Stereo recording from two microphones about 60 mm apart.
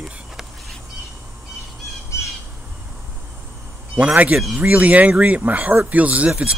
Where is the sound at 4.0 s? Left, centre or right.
Right.